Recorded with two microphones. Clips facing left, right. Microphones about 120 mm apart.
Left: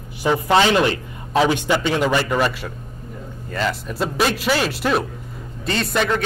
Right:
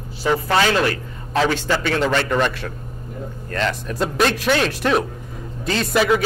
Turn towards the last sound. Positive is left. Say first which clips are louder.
# right 3 dB
turn(degrees=-5)  # may be behind; listen again after turning